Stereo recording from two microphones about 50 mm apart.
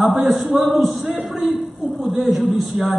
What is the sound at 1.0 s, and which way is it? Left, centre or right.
A man's voice, centre.